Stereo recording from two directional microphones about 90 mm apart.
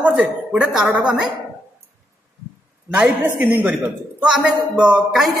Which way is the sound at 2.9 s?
15° right (ahead or behind).